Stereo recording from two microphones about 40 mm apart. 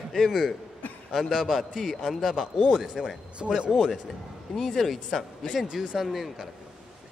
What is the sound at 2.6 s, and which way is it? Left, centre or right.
Speech, centre.